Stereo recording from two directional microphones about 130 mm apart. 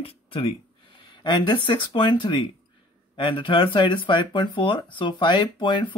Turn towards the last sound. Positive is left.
turn(degrees=35)  # may be behind; listen again after turning